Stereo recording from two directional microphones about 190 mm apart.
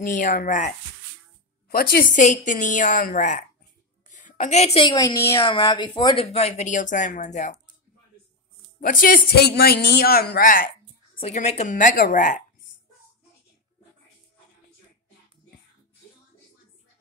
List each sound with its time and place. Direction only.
0.0 s a woman's voice: 45° left (ahead or behind)
8.7 s speech: 45° left (ahead or behind)
11.1 s speech: 35° left (ahead or behind)